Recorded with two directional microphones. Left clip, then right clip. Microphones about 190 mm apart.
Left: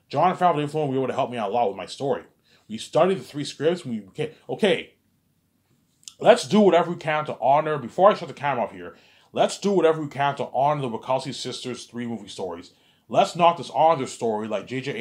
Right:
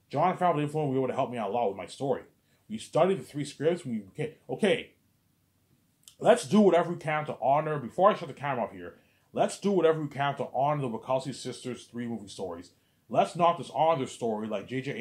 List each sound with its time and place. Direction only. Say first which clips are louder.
0.1 s speech: left 6 dB; 30° left (ahead or behind)
6.0 s speech: left 6 dB; 25° left (ahead or behind)